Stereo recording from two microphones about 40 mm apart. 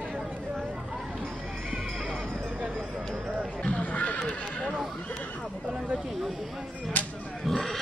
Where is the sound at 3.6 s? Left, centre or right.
Left.